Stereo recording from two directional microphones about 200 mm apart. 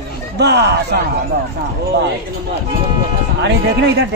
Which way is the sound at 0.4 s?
60° right (ahead or behind).